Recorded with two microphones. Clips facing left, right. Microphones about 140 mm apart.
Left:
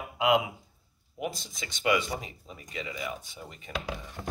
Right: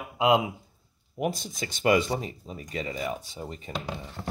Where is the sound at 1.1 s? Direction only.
45° right (ahead or behind).